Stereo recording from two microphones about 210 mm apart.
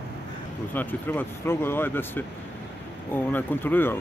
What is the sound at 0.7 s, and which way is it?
Speech, 10° left (ahead or behind).